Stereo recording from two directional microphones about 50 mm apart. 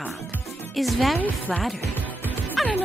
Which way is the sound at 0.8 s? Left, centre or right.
Centre.